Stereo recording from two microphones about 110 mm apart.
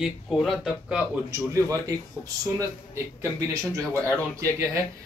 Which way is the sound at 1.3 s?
25° right (ahead or behind).